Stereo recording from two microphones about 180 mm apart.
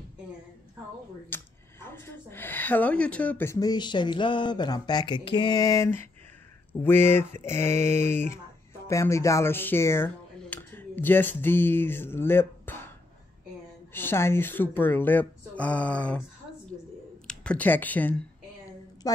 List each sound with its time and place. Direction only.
1.3 s speech: 10° left (ahead or behind)
13.9 s speech: 15° left (ahead or behind)
17.3 s speech: 5° left (ahead or behind)
19.0 s speech: 20° left (ahead or behind)